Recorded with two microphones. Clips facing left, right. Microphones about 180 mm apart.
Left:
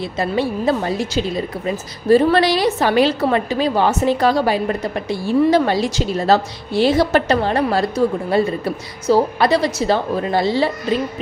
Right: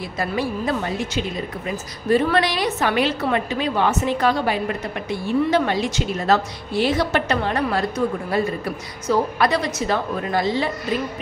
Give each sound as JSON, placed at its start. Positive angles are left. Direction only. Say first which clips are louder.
{"t": 0.2, "sound": "a woman's voice", "louder": "left 4 dB", "side_deg": 30}